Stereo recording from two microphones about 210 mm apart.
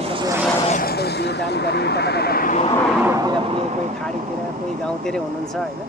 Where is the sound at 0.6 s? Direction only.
30° left (ahead or behind).